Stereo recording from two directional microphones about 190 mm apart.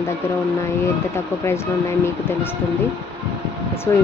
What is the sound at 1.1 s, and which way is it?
Speech, 15° left (ahead or behind).